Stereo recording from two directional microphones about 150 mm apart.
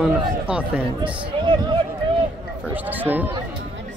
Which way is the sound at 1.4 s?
35° right (ahead or behind).